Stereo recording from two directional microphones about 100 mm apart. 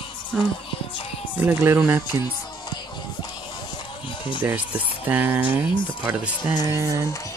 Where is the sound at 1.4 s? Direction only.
20° right (ahead or behind).